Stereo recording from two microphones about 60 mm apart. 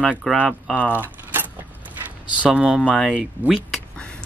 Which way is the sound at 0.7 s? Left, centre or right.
Left.